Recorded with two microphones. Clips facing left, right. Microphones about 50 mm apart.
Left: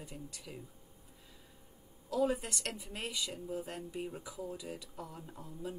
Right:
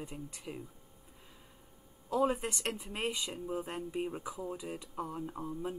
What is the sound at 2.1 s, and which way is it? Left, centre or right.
Speech, right.